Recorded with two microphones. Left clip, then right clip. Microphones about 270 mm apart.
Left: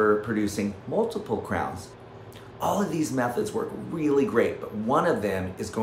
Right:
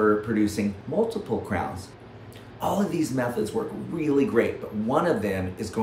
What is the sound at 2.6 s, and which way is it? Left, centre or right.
Speech, centre.